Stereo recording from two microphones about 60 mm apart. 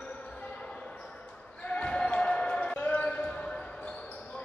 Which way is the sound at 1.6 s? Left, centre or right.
Centre.